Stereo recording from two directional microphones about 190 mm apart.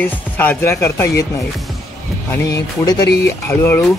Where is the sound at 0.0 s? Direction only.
10° left (ahead or behind).